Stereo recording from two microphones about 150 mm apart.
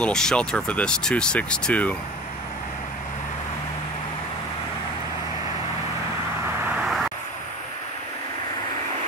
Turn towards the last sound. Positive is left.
turn(degrees=0)  # may be behind; listen again after turning